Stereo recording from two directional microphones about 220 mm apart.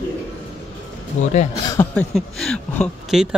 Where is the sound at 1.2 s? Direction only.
30° left (ahead or behind).